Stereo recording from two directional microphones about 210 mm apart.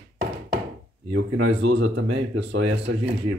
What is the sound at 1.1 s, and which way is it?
Speech, 60° right (ahead or behind).